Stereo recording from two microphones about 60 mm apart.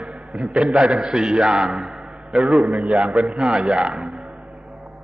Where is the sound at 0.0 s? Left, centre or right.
Centre.